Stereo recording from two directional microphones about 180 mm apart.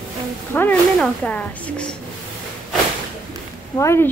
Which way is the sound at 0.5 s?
10° left (ahead or behind).